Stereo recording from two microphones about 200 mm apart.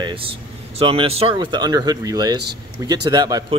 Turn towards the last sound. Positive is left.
turn(degrees=-20)  # may be behind; listen again after turning